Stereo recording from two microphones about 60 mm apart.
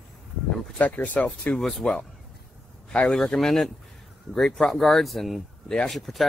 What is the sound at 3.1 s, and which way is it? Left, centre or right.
Speech, centre.